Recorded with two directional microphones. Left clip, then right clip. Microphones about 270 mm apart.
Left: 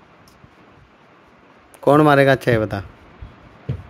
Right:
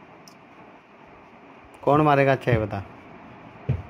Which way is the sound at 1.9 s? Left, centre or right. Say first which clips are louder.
Left 6 dB; left.